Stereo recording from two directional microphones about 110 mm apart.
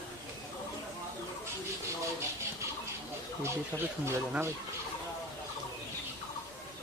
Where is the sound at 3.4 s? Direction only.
25° right (ahead or behind).